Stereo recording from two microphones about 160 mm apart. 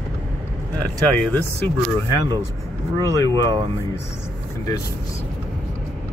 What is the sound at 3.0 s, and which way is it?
Speech, 20° left (ahead or behind).